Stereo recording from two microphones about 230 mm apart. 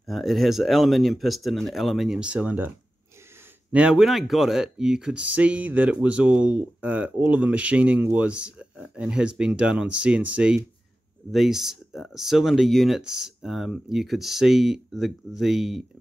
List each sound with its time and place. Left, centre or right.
0.0 s speech: centre
3.7 s speech: centre